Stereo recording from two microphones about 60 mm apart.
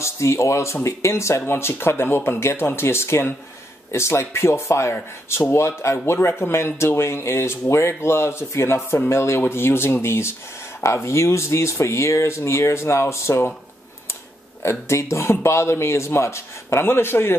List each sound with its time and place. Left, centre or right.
0.0 s speech: left
14.6 s speech: left